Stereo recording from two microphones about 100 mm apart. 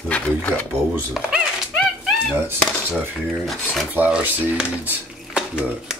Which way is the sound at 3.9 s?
15° right (ahead or behind).